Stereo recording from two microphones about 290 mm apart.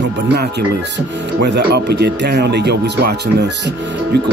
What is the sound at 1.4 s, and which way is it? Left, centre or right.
Speech, right.